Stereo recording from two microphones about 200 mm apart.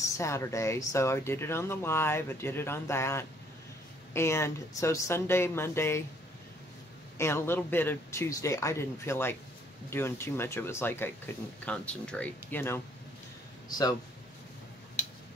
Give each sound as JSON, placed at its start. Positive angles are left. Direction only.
{"t": 0.2, "sound": "speech", "side_deg": 15}
{"t": 7.2, "sound": "a man's voice", "side_deg": 10}